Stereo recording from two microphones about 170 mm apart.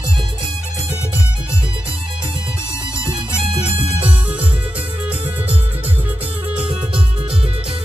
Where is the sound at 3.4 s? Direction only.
30° right (ahead or behind).